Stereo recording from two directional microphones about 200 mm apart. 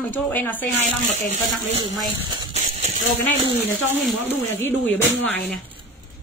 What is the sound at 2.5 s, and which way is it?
Clip-clop, 35° right (ahead or behind).